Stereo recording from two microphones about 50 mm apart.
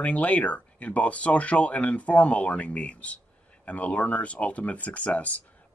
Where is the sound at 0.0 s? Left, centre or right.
Left.